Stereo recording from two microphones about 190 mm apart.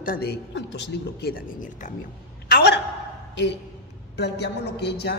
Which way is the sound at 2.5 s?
50° left (ahead or behind).